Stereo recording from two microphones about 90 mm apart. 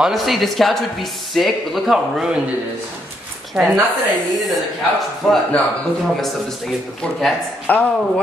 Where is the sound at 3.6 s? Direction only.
5° right (ahead or behind).